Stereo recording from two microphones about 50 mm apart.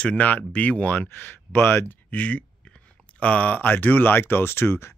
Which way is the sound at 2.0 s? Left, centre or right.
Left.